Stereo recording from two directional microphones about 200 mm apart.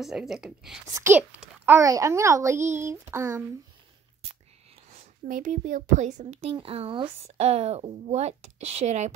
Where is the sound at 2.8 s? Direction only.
15° right (ahead or behind).